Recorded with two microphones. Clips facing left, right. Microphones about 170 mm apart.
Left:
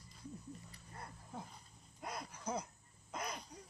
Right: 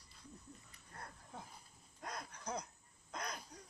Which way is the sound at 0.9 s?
10° left (ahead or behind).